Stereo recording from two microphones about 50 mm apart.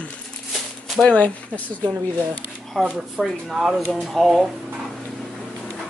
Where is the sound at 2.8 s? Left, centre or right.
Centre.